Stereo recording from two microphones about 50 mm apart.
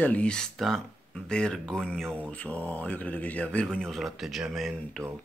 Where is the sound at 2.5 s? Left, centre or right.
Left.